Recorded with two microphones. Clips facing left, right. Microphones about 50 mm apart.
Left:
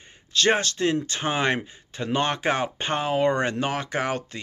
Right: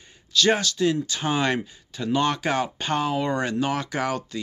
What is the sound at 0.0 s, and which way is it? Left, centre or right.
Speech, left.